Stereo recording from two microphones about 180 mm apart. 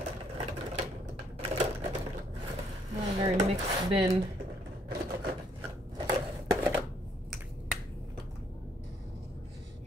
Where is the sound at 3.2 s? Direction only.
35° right (ahead or behind).